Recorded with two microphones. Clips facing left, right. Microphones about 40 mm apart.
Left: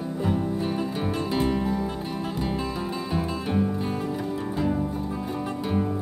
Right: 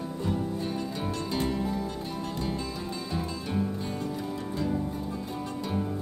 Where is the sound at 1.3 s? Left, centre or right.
Centre.